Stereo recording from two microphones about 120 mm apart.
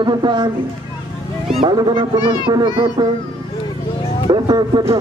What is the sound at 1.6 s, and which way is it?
A man's voice, 35° right (ahead or behind).